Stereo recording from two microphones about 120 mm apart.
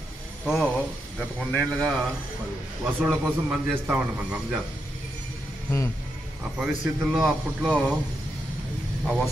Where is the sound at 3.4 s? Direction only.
15° right (ahead or behind).